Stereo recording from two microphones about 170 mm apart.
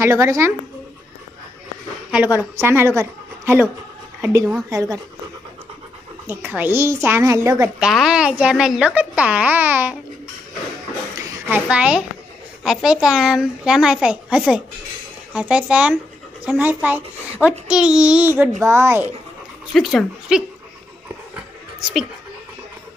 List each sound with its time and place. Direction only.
0.0 s speech: 15° right (ahead or behind)
2.0 s speech: 10° right (ahead or behind)
3.0 s a sound: 15° right (ahead or behind)
4.2 s speech: 20° right (ahead or behind)
6.2 s speech: 10° right (ahead or behind)
7.8 s speech: centre (ahead or behind)
11.1 s a woman's voice: 15° right (ahead or behind)
19.7 s a woman's voice: centre (ahead or behind)